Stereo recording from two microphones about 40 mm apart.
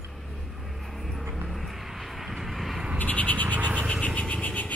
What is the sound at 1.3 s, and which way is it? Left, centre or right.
Vehicle, centre.